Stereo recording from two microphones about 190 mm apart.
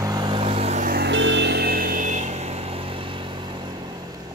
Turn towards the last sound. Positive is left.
turn(degrees=-25)  # may be behind; listen again after turning